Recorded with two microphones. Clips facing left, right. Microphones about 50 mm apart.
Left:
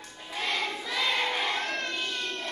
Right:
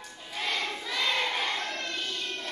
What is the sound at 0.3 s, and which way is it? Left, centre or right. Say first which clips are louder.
Crowd: left 1 dB; centre.